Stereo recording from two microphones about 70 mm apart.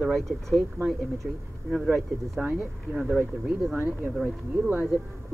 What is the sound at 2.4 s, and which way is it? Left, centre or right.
Speech, right.